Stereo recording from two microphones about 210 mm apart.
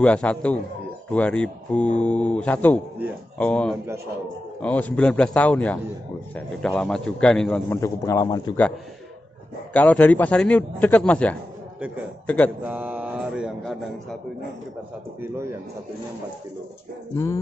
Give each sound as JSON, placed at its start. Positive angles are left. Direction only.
{"t": 0.0, "sound": "a man's voice", "side_deg": 5}
{"t": 7.8, "sound": "speech", "side_deg": 15}
{"t": 9.8, "sound": "speech", "side_deg": 5}
{"t": 12.6, "sound": "a man's voice", "side_deg": -5}
{"t": 15.1, "sound": "a man's voice", "side_deg": -10}
{"t": 17.1, "sound": "speech", "side_deg": 10}